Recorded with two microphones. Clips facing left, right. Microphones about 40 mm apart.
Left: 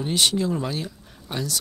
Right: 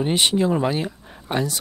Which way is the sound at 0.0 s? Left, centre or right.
Right.